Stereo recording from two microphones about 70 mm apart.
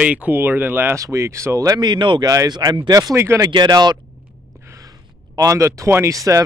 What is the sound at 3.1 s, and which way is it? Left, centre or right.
Speech, right.